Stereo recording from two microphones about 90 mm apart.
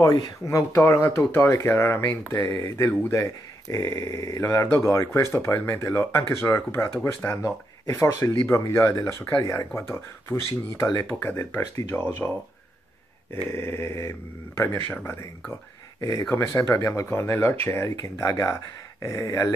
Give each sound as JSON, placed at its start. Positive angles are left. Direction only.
{"t": 0.0, "sound": "speech", "side_deg": 40}
{"t": 7.4, "sound": "speech", "side_deg": 35}
{"t": 9.4, "sound": "speech", "side_deg": 45}
{"t": 10.3, "sound": "speech", "side_deg": 30}
{"t": 11.6, "sound": "speech", "side_deg": 40}
{"t": 11.9, "sound": "speech", "side_deg": 25}
{"t": 13.3, "sound": "speech", "side_deg": 25}
{"t": 16.0, "sound": "speech", "side_deg": 40}